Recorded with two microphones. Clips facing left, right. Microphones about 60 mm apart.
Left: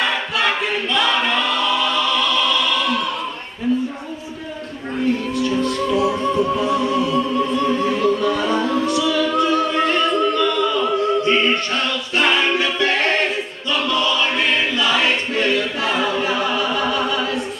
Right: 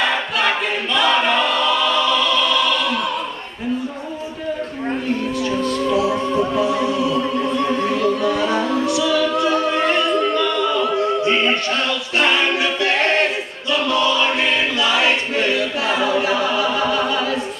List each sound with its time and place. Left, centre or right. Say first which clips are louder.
0.9 s choir: right 3 dB; centre
6.0 s music: left 1 dB; centre
7.6 s music: even; right
8.2 s music: right 1 dB; centre
10.3 s music: even; centre
12.2 s a capella: even; centre
14.4 s choir: even; centre
16.4 s music: right 1 dB; centre